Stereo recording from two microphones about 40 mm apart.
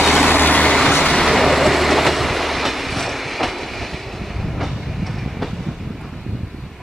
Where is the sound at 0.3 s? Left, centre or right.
Left.